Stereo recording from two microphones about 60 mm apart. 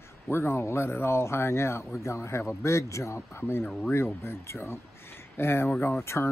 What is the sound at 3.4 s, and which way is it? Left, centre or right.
Speech, left.